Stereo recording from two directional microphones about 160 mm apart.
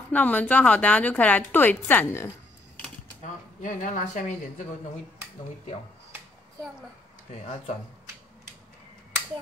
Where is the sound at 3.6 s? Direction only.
50° left (ahead or behind).